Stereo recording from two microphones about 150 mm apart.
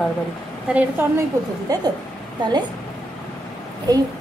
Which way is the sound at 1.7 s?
25° right (ahead or behind).